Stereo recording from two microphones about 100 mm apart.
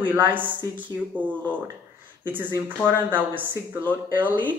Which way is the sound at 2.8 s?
20° right (ahead or behind).